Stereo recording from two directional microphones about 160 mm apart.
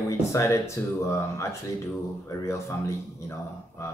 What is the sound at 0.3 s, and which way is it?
Speech, 20° left (ahead or behind).